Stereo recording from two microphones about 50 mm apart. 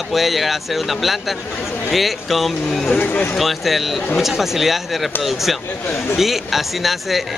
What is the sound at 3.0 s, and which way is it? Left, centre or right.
Speech, left.